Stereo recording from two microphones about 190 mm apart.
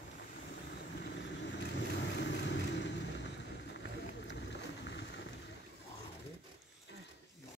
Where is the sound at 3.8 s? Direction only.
65° left (ahead or behind).